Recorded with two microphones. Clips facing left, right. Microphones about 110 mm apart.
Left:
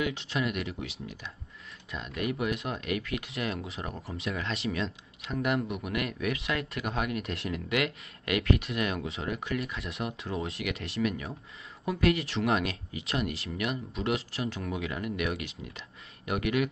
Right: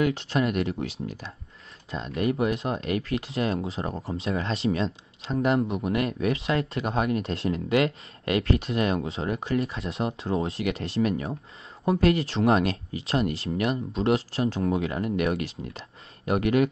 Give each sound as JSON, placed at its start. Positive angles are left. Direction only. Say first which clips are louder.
{"t": 0.0, "sound": "speech", "louder": "right 6 dB", "side_deg": -35}